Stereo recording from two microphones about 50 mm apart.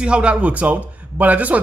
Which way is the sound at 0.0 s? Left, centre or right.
Right.